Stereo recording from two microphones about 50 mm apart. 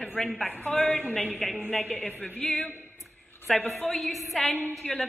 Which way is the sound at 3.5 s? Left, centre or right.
Centre.